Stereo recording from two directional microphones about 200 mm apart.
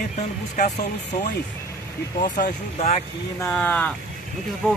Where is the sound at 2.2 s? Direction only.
40° left (ahead or behind).